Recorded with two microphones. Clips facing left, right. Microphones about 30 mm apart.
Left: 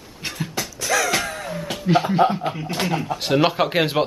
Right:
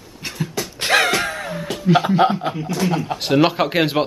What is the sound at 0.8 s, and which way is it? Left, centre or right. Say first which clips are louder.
Music: right 5 dB; right.